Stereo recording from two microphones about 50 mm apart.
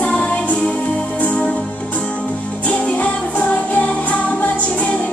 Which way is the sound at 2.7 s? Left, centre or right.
Centre.